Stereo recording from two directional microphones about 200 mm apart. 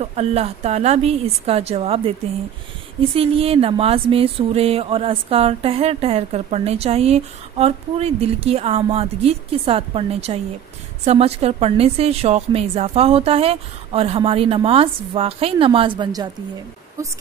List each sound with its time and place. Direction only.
0.0 s a woman's voice: 30° right (ahead or behind)